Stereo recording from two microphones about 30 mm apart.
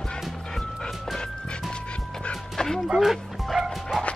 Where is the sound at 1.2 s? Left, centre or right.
Left.